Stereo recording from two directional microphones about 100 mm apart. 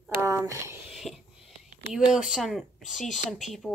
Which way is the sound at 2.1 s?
5° right (ahead or behind).